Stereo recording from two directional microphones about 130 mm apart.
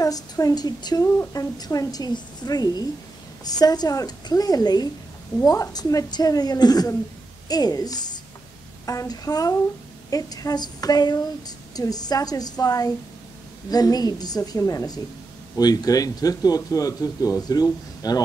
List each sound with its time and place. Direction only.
0.0 s a woman's voice: 25° left (ahead or behind)